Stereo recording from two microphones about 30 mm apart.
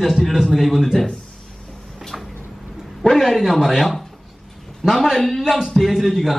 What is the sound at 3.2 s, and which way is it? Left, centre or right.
Speech, centre.